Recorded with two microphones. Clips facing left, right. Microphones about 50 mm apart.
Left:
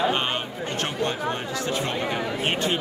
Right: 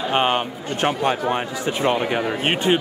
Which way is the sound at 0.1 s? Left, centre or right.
Right.